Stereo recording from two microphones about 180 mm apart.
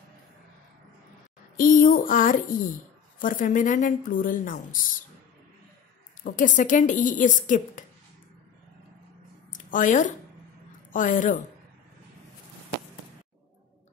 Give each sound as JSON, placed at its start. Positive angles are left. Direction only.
{"t": 1.6, "sound": "a sound", "side_deg": 50}
{"t": 3.2, "sound": "speech", "side_deg": 50}
{"t": 6.2, "sound": "speech", "side_deg": 45}
{"t": 9.5, "sound": "speech", "side_deg": 45}